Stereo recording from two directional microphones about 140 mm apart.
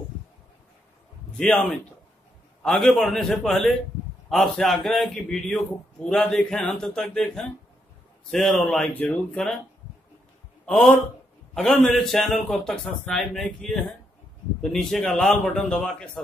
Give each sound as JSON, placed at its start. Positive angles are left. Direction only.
{"t": 1.3, "sound": "a man's voice", "side_deg": 10}
{"t": 10.6, "sound": "a man's voice", "side_deg": 5}